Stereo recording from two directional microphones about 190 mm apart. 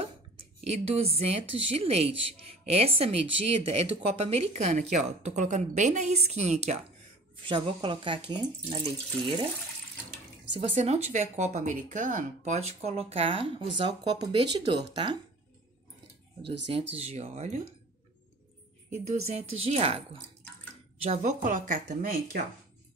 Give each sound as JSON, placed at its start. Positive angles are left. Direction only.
{"t": 0.7, "sound": "a woman's voice", "side_deg": -30}
{"t": 10.5, "sound": "a woman's voice", "side_deg": -35}
{"t": 16.7, "sound": "a woman's voice", "side_deg": -35}
{"t": 18.9, "sound": "a woman's voice", "side_deg": -35}